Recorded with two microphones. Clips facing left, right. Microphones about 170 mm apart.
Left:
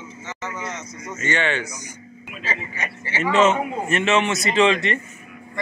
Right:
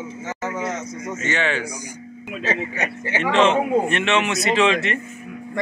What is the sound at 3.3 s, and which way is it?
A man's voice, 5° left (ahead or behind).